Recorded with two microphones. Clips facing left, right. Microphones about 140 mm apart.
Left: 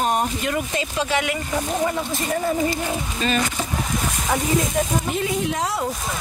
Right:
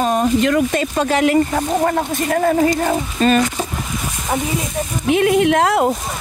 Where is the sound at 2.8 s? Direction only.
45° right (ahead or behind).